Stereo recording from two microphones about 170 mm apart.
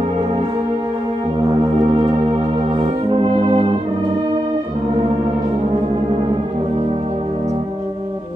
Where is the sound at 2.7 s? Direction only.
30° right (ahead or behind).